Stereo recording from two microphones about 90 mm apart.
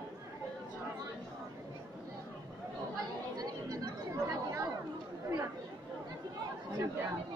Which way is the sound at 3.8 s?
35° right (ahead or behind).